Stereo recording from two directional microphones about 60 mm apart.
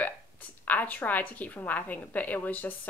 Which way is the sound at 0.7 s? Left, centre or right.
Left.